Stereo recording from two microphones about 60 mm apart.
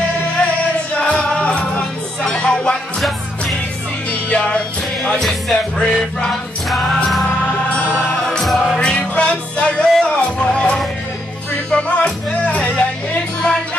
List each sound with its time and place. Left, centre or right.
0.9 s music: centre
4.1 s music: centre
6.7 s music: centre
8.3 s music: centre
8.7 s music: centre